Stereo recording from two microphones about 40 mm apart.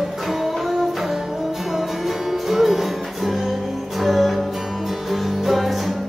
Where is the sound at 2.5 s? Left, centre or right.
Centre.